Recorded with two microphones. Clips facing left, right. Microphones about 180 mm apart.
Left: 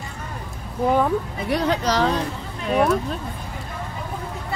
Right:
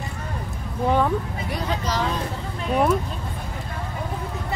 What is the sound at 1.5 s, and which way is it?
Speech, 75° left (ahead or behind).